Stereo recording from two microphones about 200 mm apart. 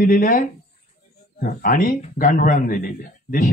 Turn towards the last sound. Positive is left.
turn(degrees=45)  # may be behind; listen again after turning